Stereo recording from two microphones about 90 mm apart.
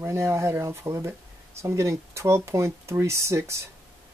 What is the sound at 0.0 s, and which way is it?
Speech, 30° right (ahead or behind).